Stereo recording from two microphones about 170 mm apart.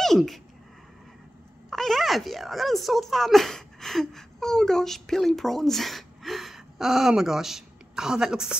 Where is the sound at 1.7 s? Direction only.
Centre (ahead or behind).